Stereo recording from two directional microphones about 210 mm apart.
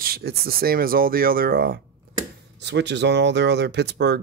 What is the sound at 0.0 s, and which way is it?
Speech, 45° right (ahead or behind).